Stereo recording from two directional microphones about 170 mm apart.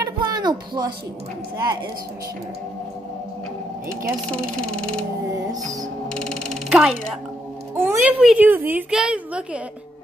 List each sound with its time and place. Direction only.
0.0 s a sound: 25° right (ahead or behind)
3.9 s speech: 5° left (ahead or behind)
6.0 s music: 5° left (ahead or behind)
7.7 s a woman's voice: 15° right (ahead or behind)